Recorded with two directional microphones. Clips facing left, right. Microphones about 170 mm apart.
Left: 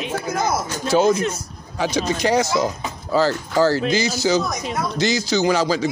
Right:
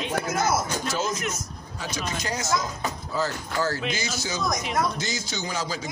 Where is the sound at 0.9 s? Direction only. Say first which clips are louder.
Left 15 dB; 60° left (ahead or behind).